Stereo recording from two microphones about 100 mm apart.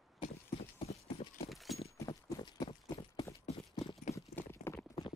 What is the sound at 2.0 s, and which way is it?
Clip-clop, 40° left (ahead or behind).